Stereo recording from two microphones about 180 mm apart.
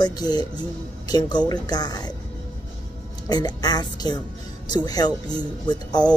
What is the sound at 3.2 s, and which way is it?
Speech, 20° left (ahead or behind).